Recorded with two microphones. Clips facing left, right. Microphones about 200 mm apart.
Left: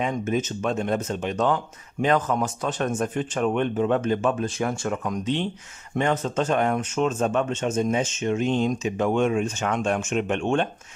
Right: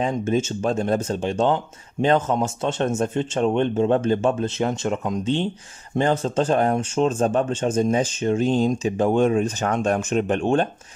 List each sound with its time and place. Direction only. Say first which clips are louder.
0.0 s speech: right 3 dB; 30° right (ahead or behind)